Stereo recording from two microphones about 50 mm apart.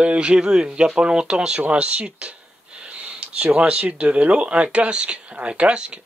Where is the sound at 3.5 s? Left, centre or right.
Right.